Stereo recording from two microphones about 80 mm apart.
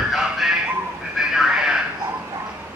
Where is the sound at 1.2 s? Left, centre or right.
Centre.